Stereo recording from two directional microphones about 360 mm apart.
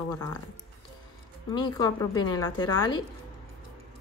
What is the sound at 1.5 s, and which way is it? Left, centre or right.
A woman's voice, centre.